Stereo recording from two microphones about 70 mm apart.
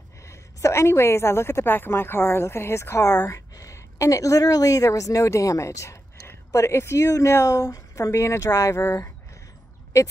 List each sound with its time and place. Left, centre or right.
0.2 s a woman's voice: left